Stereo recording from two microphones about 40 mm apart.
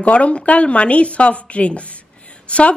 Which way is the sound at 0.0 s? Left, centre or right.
Left.